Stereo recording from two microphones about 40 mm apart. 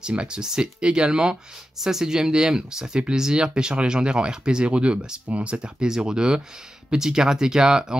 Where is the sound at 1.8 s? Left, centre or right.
Centre.